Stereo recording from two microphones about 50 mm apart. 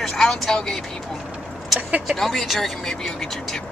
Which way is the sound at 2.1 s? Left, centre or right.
Centre.